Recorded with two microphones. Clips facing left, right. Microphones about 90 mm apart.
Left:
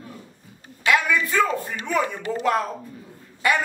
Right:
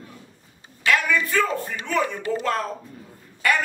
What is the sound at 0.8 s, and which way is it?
A man's voice, 15° left (ahead or behind).